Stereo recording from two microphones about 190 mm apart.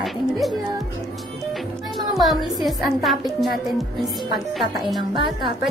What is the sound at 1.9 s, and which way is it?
Speech, centre (ahead or behind).